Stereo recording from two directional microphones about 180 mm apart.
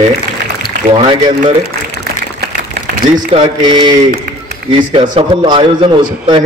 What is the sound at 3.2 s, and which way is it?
A man's voice, 25° right (ahead or behind).